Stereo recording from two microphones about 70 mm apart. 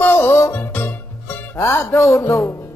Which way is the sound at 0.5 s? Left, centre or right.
Left.